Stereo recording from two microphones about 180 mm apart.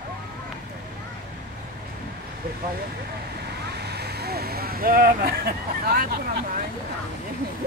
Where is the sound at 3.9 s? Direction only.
65° right (ahead or behind).